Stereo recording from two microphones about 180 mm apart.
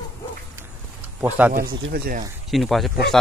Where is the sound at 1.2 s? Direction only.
10° right (ahead or behind).